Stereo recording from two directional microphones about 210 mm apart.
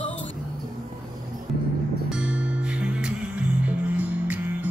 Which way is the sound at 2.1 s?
5° right (ahead or behind).